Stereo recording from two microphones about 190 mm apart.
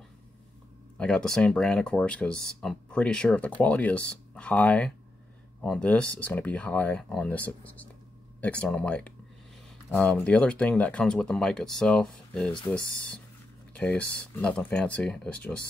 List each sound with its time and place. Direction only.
0.9 s speech: 5° left (ahead or behind)